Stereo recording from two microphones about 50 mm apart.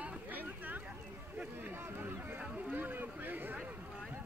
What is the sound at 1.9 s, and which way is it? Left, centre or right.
Run, right.